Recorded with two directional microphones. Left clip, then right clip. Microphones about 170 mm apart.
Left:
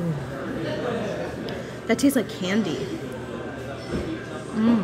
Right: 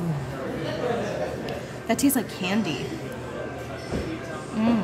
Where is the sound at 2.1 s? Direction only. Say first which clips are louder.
Left 2 dB; 20° right (ahead or behind).